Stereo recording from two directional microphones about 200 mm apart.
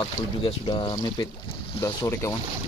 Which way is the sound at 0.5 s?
25° left (ahead or behind).